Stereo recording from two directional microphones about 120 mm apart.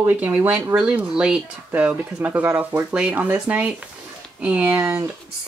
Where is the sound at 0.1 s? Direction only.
15° right (ahead or behind).